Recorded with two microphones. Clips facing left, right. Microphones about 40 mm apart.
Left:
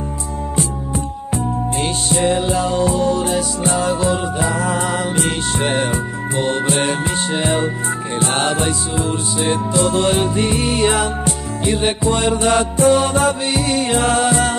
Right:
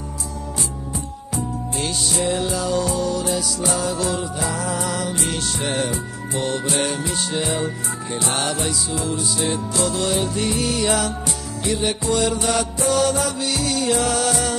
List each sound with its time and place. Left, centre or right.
1.3 s music: left